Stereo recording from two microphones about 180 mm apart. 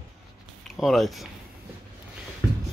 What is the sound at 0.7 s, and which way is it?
Speech, centre (ahead or behind).